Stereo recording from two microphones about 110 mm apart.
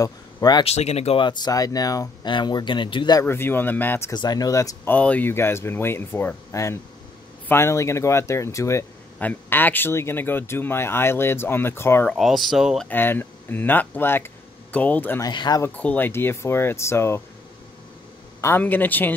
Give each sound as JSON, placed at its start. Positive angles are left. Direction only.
{"t": 0.0, "sound": "speech", "side_deg": 40}
{"t": 0.7, "sound": "speech", "side_deg": 75}
{"t": 1.1, "sound": "speech", "side_deg": 45}
{"t": 3.2, "sound": "speech", "side_deg": 20}
{"t": 4.1, "sound": "speech", "side_deg": 40}
{"t": 4.8, "sound": "speech", "side_deg": 15}
{"t": 9.2, "sound": "speech", "side_deg": 15}
{"t": 12.1, "sound": "speech", "side_deg": 0}
{"t": 12.8, "sound": "speech", "side_deg": 20}
{"t": 15.3, "sound": "speech", "side_deg": 40}
{"t": 15.6, "sound": "speech", "side_deg": 15}
{"t": 18.4, "sound": "a man's voice", "side_deg": 20}